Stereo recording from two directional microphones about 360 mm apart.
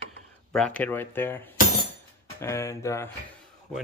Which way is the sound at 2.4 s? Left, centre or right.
Centre.